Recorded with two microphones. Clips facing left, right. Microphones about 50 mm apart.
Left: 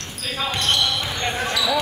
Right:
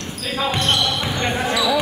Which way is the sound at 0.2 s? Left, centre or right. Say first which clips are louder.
Right 3 dB; centre.